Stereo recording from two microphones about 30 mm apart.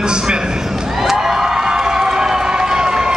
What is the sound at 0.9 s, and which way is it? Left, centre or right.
Cheering, centre.